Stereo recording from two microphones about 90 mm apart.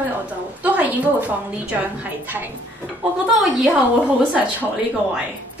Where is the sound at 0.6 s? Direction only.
20° right (ahead or behind).